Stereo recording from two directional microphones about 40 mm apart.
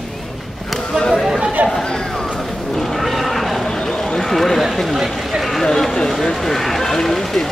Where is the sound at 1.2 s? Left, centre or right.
Centre.